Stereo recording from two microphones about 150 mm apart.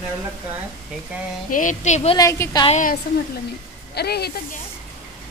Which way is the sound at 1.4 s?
60° left (ahead or behind).